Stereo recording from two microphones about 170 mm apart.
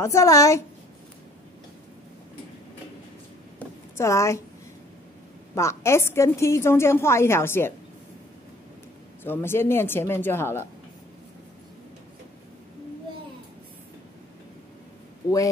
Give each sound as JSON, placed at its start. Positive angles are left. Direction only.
{"t": 0.0, "sound": "a woman's voice", "side_deg": 20}
{"t": 3.5, "sound": "a sound", "side_deg": 15}
{"t": 5.5, "sound": "a woman's voice", "side_deg": 15}
{"t": 9.2, "sound": "a woman's voice", "side_deg": 15}